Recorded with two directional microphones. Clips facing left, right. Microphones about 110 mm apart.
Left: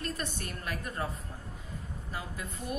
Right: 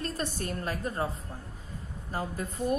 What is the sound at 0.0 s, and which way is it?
Speech, 35° right (ahead or behind).